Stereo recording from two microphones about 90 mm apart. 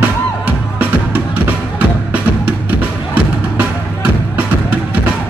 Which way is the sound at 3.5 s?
15° right (ahead or behind).